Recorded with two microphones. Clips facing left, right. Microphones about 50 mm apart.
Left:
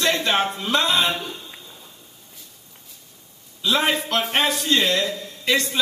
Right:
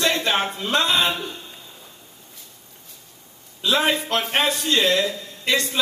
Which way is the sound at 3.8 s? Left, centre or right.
Left.